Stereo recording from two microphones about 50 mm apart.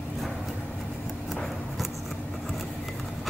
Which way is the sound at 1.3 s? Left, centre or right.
Centre.